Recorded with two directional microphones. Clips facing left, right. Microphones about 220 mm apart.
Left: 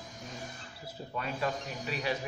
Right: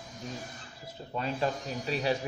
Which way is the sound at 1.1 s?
30° right (ahead or behind).